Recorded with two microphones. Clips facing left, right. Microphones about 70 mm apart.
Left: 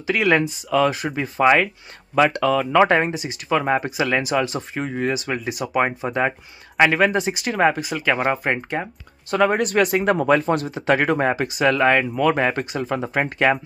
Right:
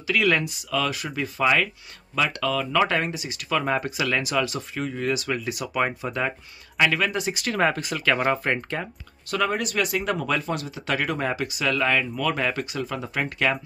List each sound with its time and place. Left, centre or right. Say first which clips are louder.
0.0 s speech: left 4 dB; left
9.3 s speech: left 7 dB; left